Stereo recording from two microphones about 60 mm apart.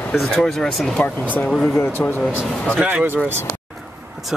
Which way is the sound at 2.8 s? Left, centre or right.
Right.